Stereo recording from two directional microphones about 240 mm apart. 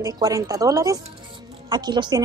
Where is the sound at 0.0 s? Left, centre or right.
Centre.